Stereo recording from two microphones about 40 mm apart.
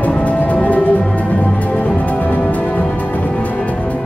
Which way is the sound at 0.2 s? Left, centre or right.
Left.